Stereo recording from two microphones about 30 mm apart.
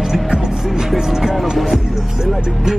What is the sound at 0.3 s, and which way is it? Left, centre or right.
Music, right.